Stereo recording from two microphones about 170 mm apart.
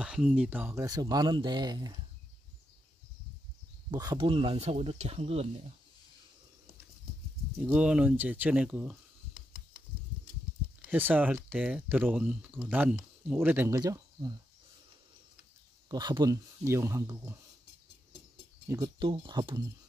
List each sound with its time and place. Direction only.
0.0 s speech: 5° right (ahead or behind); by 2.0 s 25° right (ahead or behind)
3.9 s speech: 20° right (ahead or behind); by 5.5 s 40° right (ahead or behind)
7.5 s speech: 5° right (ahead or behind)
10.9 s speech: 10° right (ahead or behind)
15.9 s speech: 25° right (ahead or behind)
18.9 s speech: 30° right (ahead or behind)